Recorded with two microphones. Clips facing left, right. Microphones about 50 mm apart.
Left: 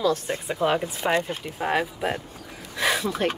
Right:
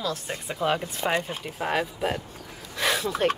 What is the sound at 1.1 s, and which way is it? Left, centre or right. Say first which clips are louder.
Speech: left 4 dB; centre.